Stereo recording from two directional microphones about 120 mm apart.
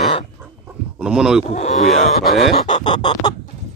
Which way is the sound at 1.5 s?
65° left (ahead or behind).